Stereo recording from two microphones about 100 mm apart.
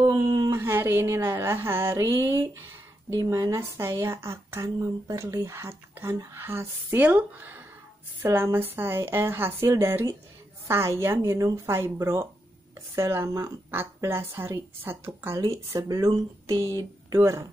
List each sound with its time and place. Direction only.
0.0 s a sound: 40° right (ahead or behind)
0.6 s speech: 25° right (ahead or behind)
15.4 s speech: 35° right (ahead or behind)